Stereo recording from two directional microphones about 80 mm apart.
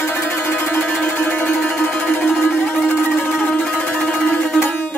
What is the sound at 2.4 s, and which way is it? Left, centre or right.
Music, left.